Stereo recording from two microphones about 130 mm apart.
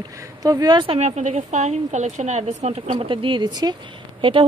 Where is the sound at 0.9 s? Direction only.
60° right (ahead or behind).